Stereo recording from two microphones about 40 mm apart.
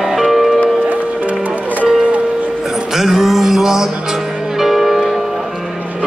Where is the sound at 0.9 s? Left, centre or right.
Right.